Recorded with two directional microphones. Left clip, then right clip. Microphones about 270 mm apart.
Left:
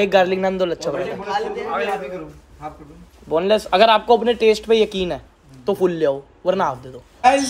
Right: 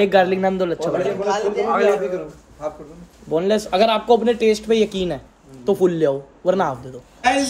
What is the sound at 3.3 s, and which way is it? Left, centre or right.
Speech, centre.